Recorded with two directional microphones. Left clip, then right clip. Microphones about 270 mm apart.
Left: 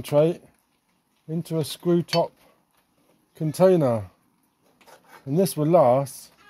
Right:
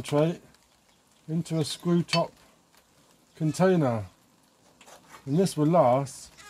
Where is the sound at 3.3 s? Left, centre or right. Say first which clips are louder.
Left 6 dB; left.